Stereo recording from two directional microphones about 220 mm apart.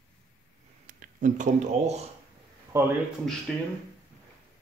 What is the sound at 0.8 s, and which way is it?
Speech, 35° right (ahead or behind).